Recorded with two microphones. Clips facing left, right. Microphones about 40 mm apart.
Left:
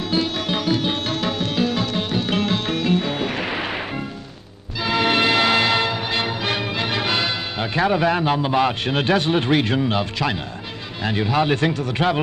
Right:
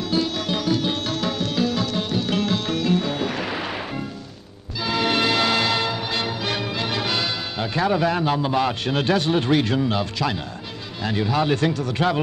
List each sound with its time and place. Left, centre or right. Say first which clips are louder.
0.1 s tabla: left 1 dB; left
4.7 s music: left 3 dB; left
11.0 s speech: left 2 dB; left